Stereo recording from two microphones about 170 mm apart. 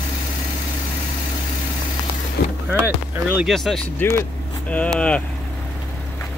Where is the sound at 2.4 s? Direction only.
65° left (ahead or behind).